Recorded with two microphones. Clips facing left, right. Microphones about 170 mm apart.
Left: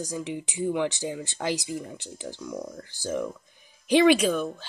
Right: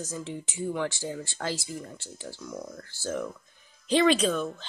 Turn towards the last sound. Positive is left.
turn(degrees=10)  # may be behind; listen again after turning